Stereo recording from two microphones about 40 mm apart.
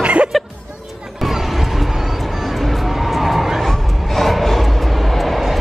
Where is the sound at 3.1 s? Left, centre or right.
Centre.